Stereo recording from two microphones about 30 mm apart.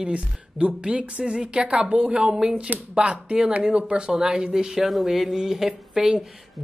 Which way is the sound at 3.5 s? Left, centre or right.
Right.